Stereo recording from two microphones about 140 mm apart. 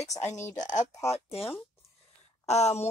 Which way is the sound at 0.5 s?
60° left (ahead or behind).